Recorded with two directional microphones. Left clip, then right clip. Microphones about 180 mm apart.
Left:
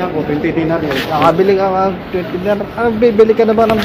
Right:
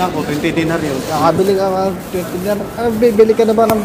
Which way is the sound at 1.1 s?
5° left (ahead or behind).